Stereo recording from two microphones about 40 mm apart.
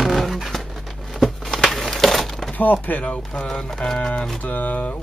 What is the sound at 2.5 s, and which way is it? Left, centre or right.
Speech, left.